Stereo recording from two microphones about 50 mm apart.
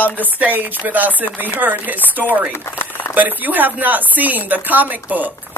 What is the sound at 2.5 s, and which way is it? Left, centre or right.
Crumpling, left.